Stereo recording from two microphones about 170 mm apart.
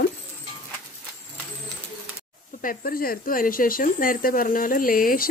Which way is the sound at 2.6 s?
55° left (ahead or behind).